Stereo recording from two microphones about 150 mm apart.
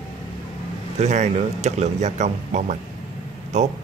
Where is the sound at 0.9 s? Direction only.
50° right (ahead or behind).